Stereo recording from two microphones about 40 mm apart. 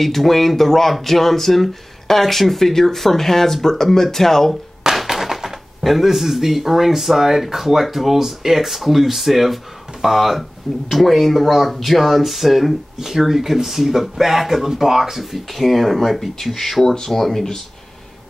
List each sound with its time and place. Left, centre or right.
0.0 s speech: centre
4.9 s speech: centre